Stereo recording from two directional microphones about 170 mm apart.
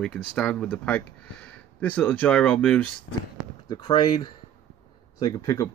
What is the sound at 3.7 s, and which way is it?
Speech, 25° left (ahead or behind).